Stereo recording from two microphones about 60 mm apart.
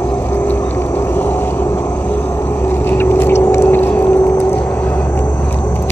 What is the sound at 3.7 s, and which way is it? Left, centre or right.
Vehicle, left.